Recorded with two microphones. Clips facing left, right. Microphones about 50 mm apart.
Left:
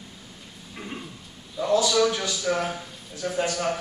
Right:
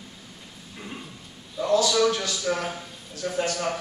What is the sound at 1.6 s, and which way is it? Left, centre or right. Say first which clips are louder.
A man's voice: even; centre.